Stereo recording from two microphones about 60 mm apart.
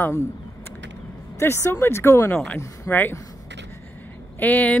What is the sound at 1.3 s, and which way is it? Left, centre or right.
Speech, left.